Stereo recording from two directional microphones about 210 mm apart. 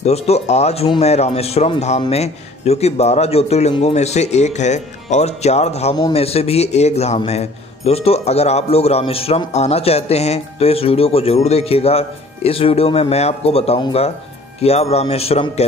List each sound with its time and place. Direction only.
0.0 s a man's voice: 30° left (ahead or behind)